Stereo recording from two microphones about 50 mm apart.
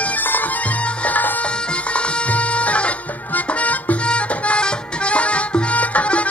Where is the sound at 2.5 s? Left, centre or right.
Left.